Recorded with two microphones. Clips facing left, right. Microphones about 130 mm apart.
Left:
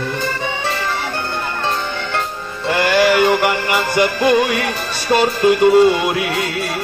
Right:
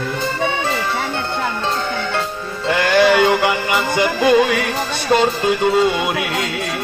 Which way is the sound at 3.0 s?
20° right (ahead or behind).